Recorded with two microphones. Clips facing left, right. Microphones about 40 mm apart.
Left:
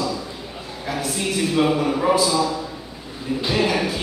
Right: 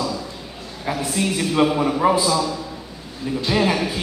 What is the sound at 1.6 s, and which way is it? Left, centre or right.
Speech, right.